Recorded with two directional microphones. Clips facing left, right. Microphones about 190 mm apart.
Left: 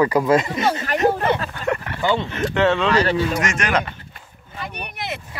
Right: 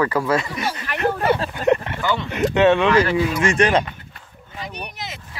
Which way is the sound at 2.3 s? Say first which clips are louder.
Right 3 dB; 15° right (ahead or behind).